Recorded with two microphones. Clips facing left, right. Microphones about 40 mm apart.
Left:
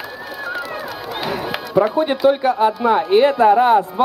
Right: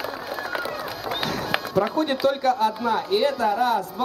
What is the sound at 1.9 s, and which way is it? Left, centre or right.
Speech, left.